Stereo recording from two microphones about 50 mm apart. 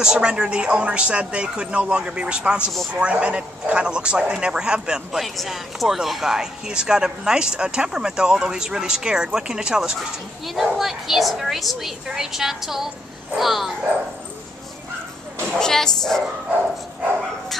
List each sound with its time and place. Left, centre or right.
0.0 s speech: centre
5.2 s speech: centre
9.9 s speech: centre
15.6 s speech: centre